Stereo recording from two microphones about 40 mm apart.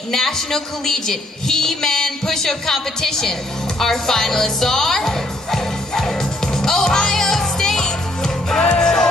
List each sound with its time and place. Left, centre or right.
0.1 s a man's voice: centre
3.8 s music: centre